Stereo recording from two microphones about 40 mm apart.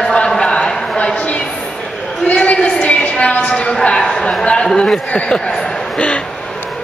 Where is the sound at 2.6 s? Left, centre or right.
Left.